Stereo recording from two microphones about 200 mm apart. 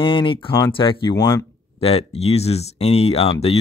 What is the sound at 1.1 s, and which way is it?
Speech, 15° left (ahead or behind).